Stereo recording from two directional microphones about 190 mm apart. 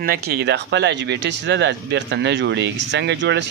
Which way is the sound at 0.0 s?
55° right (ahead or behind).